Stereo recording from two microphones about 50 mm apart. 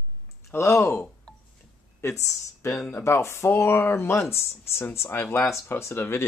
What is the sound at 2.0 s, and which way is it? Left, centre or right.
Speech, left.